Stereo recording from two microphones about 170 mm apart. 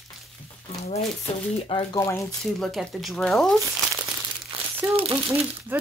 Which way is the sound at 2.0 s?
15° left (ahead or behind).